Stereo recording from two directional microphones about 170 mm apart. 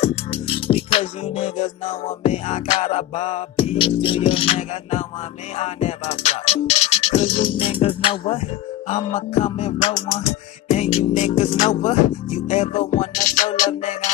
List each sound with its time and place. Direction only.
0.0 s music: 35° left (ahead or behind)
8.8 s music: 40° left (ahead or behind)